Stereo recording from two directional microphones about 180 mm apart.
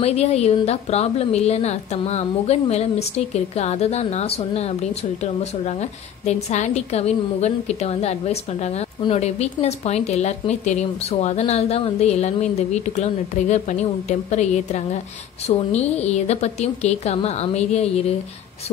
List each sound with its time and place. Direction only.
0.0 s a woman's voice: 35° left (ahead or behind)